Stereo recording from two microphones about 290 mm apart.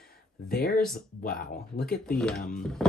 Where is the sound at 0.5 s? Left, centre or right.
Left.